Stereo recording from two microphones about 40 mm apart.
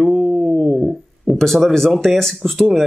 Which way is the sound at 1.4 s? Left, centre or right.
Centre.